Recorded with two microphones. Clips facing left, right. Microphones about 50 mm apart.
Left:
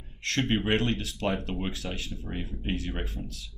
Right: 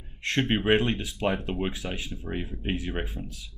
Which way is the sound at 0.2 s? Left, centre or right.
Right.